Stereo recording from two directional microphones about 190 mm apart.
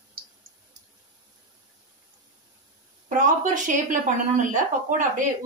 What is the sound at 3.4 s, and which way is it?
Speech, 40° right (ahead or behind).